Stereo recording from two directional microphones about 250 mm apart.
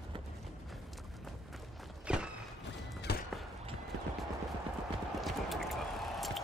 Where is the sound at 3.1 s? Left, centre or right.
Left.